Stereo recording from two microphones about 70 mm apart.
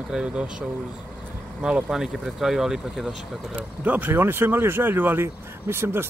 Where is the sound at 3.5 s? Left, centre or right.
Right.